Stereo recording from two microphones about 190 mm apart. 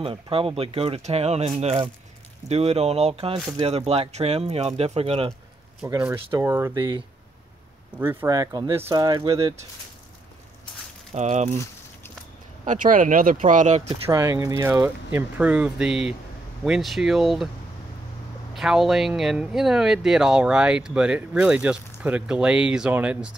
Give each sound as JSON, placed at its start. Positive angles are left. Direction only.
{"t": 0.0, "sound": "speech", "side_deg": -30}
{"t": 5.9, "sound": "speech", "side_deg": -15}
{"t": 8.0, "sound": "speech", "side_deg": -10}
{"t": 11.1, "sound": "speech", "side_deg": -35}
{"t": 12.6, "sound": "speech", "side_deg": -45}
{"t": 14.0, "sound": "speech", "side_deg": -15}
{"t": 18.5, "sound": "speech", "side_deg": 0}